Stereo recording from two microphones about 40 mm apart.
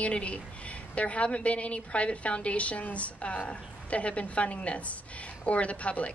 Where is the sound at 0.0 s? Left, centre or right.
Left.